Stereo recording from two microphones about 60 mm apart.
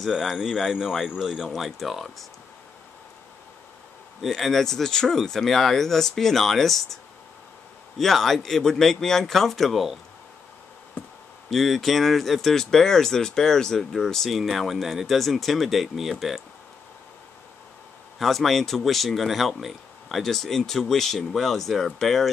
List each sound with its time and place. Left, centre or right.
0.0 s speech: centre
4.2 s speech: centre
8.0 s speech: centre
11.5 s speech: centre
18.2 s speech: centre